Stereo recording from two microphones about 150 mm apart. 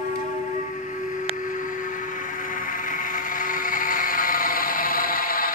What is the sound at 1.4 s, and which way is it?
Vehicle, 60° left (ahead or behind).